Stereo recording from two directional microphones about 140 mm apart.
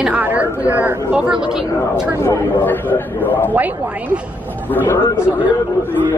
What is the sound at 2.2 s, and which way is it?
A man's voice, 15° left (ahead or behind).